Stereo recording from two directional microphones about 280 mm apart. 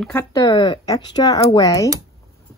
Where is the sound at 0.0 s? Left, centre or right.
Centre.